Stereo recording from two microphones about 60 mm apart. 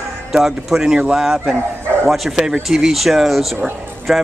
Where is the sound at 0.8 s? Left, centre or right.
Centre.